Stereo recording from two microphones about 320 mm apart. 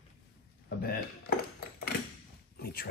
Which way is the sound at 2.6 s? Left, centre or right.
Left.